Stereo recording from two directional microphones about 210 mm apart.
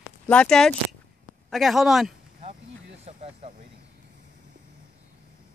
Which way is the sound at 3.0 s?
30° right (ahead or behind).